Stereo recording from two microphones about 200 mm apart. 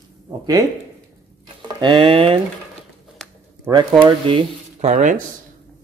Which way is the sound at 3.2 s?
5° left (ahead or behind).